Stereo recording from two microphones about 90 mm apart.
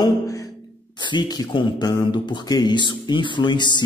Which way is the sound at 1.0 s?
55° left (ahead or behind).